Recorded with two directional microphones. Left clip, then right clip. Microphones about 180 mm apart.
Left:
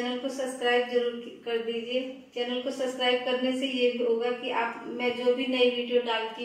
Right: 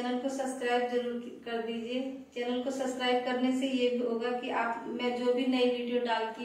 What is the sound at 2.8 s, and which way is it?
Speech, 15° left (ahead or behind).